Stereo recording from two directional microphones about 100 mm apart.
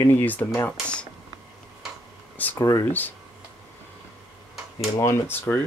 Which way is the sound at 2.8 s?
20° left (ahead or behind).